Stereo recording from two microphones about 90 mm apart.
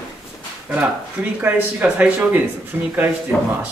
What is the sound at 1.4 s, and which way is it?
Speech, 20° right (ahead or behind).